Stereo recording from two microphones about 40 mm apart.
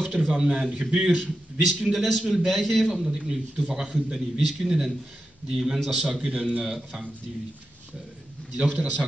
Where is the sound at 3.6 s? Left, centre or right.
Right.